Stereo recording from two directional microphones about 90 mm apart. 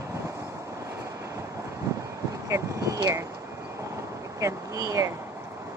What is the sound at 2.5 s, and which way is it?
Speech, 35° right (ahead or behind).